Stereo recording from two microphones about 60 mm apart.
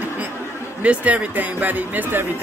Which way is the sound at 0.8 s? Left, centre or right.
Right.